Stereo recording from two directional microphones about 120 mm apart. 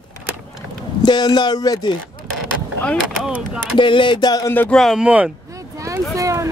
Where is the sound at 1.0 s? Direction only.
35° left (ahead or behind).